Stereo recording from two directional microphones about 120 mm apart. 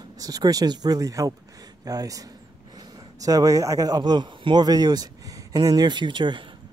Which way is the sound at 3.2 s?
30° right (ahead or behind).